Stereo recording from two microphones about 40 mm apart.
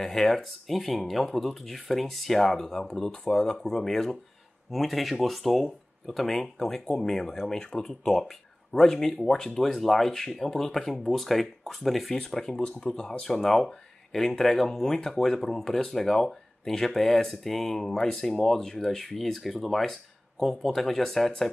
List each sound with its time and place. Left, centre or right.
0.0 s speech: centre
4.6 s speech: centre
12.2 s speech: centre